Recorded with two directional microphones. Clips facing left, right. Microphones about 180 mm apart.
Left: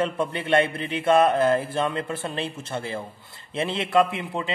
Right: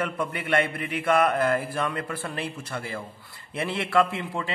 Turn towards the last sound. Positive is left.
turn(degrees=20)  # may be behind; listen again after turning